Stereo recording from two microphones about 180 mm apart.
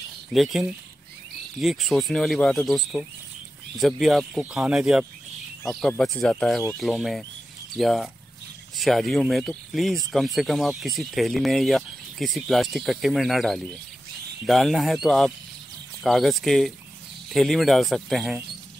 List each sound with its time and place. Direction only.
0.3 s speech: centre (ahead or behind)